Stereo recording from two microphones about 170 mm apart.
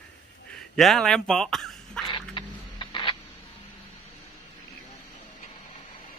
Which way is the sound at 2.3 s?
25° left (ahead or behind).